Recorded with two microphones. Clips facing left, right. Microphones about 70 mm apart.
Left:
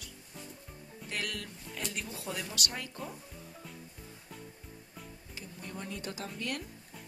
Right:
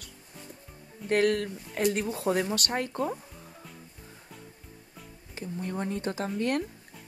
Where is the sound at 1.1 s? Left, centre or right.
Right.